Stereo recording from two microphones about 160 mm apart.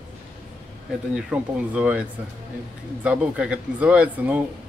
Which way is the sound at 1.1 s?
10° right (ahead or behind).